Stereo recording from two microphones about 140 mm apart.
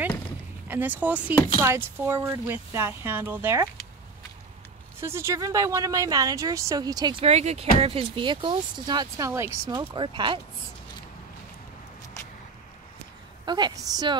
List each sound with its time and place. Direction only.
0.7 s speech: 15° right (ahead or behind)
5.0 s speech: 20° right (ahead or behind)
7.2 s speech: 50° right (ahead or behind); by 9.6 s 20° right (ahead or behind)
9.9 s speech: 35° right (ahead or behind)
13.5 s speech: 30° right (ahead or behind)